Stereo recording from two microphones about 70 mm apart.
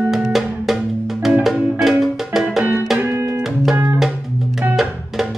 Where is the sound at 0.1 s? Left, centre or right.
Centre.